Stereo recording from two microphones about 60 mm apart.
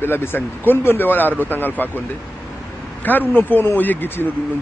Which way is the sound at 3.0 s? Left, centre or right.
Left.